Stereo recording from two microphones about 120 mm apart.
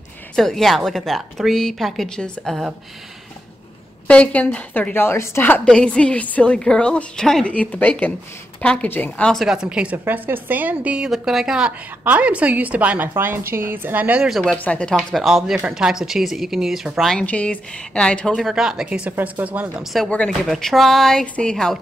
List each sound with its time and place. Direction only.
0.4 s speech: 5° left (ahead or behind)
4.1 s a woman's voice: 10° left (ahead or behind)
5.7 s a woman's voice: 10° left (ahead or behind); by 14.4 s 10° right (ahead or behind)
14.4 s a woman's voice: 10° left (ahead or behind)
15.0 s a woman's voice: centre (ahead or behind)
19.8 s speech: centre (ahead or behind)